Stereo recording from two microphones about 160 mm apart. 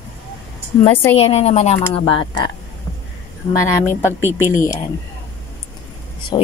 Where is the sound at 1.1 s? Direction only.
40° left (ahead or behind).